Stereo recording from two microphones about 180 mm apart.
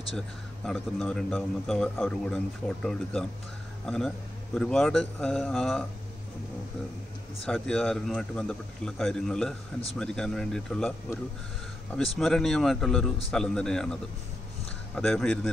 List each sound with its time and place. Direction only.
0.7 s a man's voice: 5° left (ahead or behind)
7.4 s a man's voice: 5° left (ahead or behind)
12.2 s a man's voice: centre (ahead or behind)
15.0 s a man's voice: 5° left (ahead or behind)